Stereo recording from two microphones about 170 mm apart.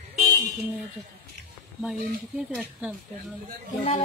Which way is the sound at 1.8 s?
Centre (ahead or behind).